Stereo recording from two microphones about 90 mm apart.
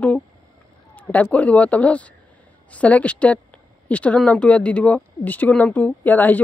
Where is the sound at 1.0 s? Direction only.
15° left (ahead or behind).